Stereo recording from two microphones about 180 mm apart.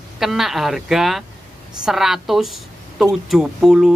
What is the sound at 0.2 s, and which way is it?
Speech, centre (ahead or behind).